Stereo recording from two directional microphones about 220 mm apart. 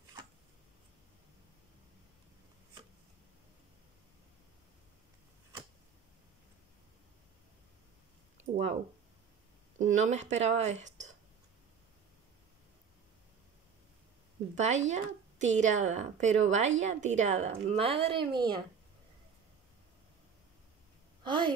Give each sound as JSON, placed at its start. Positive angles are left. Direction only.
{"t": 9.8, "sound": "a woman's voice", "side_deg": -35}
{"t": 14.6, "sound": "a woman's voice", "side_deg": -30}
{"t": 21.2, "sound": "a woman's voice", "side_deg": -20}